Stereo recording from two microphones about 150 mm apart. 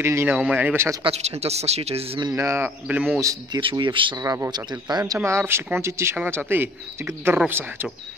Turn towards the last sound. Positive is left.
turn(degrees=-15)  # may be behind; listen again after turning